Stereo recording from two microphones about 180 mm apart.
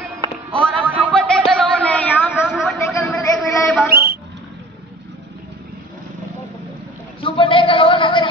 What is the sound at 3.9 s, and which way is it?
Speech, 60° right (ahead or behind).